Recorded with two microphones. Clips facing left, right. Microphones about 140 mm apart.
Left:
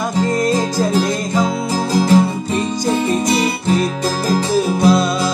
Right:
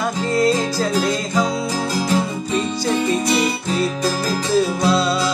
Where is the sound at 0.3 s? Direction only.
15° left (ahead or behind).